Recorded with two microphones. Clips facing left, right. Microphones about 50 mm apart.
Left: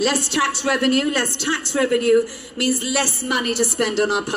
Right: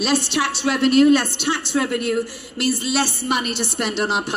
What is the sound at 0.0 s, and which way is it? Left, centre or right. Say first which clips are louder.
A woman's voice: left 1 dB; centre.